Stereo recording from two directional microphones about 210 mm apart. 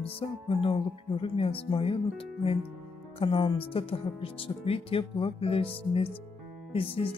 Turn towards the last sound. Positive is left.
turn(degrees=25)  # may be behind; listen again after turning